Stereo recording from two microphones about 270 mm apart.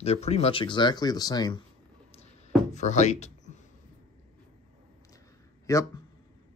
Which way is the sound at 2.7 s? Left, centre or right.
Left.